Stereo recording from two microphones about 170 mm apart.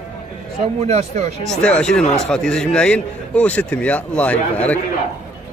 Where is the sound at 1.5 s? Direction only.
5° left (ahead or behind).